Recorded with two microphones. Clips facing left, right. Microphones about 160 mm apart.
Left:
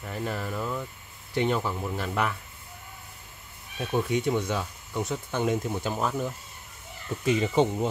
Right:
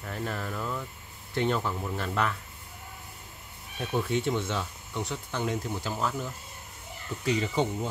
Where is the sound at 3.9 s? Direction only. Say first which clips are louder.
Left 2 dB; 15° left (ahead or behind).